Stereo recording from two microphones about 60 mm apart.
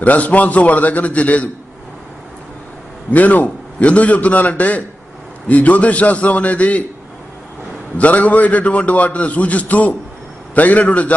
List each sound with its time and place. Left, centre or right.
0.0 s a man's voice: left
3.1 s a man's voice: left
8.0 s a man's voice: left